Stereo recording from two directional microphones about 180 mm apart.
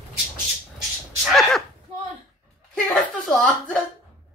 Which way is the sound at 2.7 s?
5° left (ahead or behind).